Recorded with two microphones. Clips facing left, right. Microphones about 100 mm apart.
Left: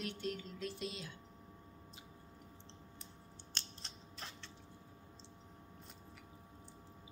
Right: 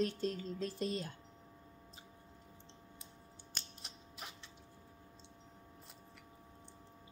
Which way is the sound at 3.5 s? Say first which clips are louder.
Left 1 dB; 10° right (ahead or behind).